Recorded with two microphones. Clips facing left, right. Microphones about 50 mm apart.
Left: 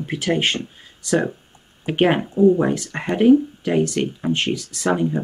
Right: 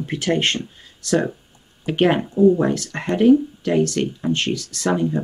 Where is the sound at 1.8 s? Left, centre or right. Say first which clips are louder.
Even; centre.